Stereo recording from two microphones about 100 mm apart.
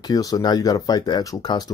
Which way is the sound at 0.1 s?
40° left (ahead or behind).